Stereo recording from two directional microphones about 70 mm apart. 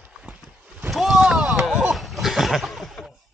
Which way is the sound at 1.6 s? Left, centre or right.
Centre.